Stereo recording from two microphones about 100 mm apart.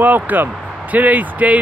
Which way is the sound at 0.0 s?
20° right (ahead or behind).